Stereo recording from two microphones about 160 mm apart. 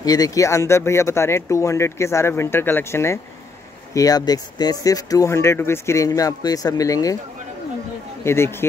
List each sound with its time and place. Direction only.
0.0 s speech: 25° left (ahead or behind)
8.2 s speech: 15° left (ahead or behind)